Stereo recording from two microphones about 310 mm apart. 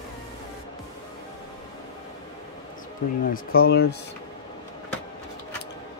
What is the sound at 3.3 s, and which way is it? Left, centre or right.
Speech, left.